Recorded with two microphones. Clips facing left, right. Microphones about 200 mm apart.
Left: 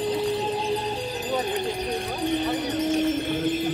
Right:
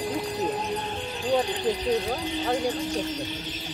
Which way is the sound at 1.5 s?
50° left (ahead or behind).